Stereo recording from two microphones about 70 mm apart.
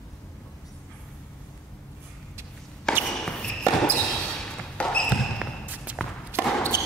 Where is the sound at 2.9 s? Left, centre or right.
Centre.